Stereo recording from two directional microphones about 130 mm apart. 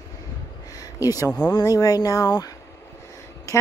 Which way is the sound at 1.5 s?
30° left (ahead or behind).